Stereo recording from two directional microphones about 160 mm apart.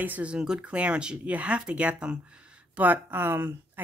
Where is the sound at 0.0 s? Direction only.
10° right (ahead or behind).